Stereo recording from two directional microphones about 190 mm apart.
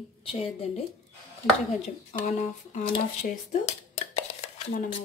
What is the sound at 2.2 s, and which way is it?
Speech, 40° left (ahead or behind).